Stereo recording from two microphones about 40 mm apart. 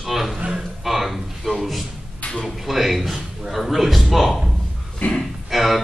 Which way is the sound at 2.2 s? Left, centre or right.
Left.